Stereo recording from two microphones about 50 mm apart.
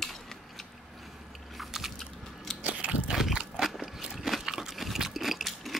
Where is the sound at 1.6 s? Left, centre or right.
Centre.